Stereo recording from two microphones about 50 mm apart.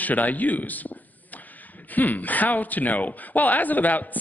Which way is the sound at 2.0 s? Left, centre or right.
Left.